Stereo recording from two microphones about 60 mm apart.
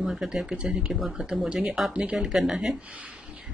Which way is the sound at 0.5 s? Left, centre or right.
Centre.